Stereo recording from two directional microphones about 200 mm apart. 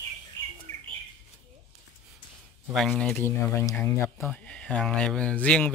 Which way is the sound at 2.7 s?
Centre (ahead or behind).